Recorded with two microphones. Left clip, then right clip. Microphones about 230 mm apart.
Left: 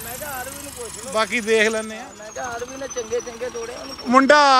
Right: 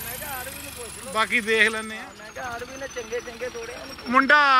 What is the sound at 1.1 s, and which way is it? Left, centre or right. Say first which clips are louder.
Speech: left 2 dB; centre.